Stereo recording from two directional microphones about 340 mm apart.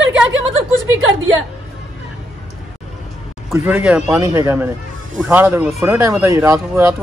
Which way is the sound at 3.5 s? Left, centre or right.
Centre.